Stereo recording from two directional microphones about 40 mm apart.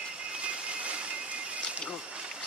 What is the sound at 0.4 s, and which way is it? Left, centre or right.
Vehicle, right.